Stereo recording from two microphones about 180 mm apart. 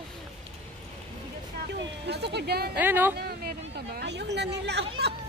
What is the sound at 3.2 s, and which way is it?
Speech, 60° right (ahead or behind).